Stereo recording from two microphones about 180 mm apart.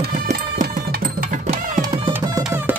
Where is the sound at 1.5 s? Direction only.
25° right (ahead or behind).